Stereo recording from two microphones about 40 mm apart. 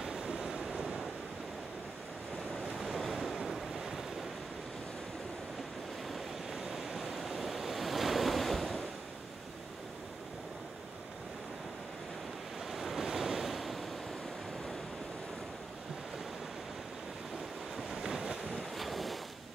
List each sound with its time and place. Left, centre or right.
0.0 s waves: centre
2.8 s waves: centre
6.0 s waves: centre
12.7 s waves: centre
18.0 s waves: centre
18.8 s waves: centre